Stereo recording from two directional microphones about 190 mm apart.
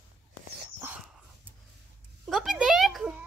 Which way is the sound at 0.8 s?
10° right (ahead or behind).